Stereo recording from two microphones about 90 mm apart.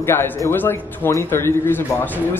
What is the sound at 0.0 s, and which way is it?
A man's voice, 30° left (ahead or behind).